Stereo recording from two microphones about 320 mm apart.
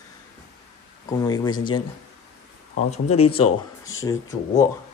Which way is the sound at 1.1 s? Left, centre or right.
Centre.